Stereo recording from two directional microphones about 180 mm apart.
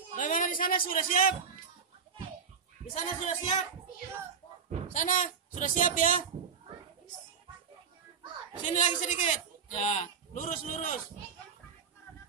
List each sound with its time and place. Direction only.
0.1 s speech: 45° left (ahead or behind)
2.9 s speech: 40° left (ahead or behind)
4.8 s speech: 45° left (ahead or behind)
8.7 s speech: 45° left (ahead or behind)